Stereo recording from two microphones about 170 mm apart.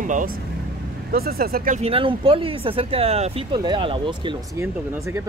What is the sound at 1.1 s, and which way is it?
Speech, 60° right (ahead or behind).